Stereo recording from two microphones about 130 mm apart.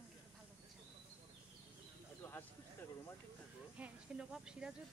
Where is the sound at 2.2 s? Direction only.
15° left (ahead or behind).